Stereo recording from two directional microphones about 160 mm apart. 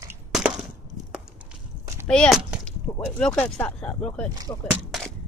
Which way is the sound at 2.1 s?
5° left (ahead or behind).